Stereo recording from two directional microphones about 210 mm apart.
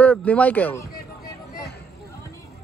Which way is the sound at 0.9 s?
45° left (ahead or behind).